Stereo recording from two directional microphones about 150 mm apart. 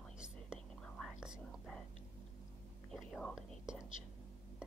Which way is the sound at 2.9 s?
5° left (ahead or behind).